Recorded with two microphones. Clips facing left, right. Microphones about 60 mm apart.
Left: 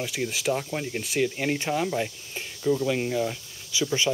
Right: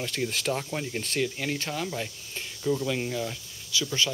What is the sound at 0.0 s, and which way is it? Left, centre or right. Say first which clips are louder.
Speech: left 2 dB; centre.